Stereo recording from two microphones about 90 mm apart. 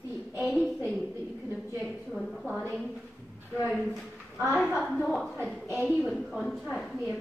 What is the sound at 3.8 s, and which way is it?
A woman's voice, 5° right (ahead or behind).